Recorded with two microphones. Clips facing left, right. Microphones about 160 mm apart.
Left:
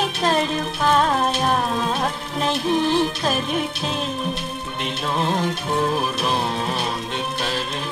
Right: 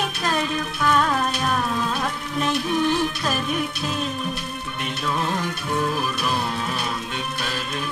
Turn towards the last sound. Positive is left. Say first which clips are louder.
# left 2 dB
turn(degrees=30)  # may be behind; listen again after turning